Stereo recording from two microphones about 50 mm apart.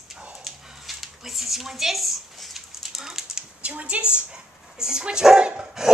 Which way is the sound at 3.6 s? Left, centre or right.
Right.